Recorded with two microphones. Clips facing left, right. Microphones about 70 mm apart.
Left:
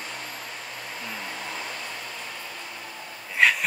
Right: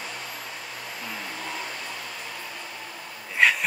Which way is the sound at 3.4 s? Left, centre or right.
Centre.